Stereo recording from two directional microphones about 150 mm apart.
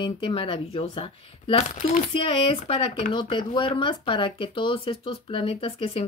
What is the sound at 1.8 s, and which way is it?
Speech, 55° left (ahead or behind).